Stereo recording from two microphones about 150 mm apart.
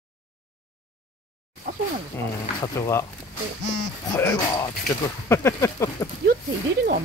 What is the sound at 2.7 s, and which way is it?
Speech, 20° left (ahead or behind).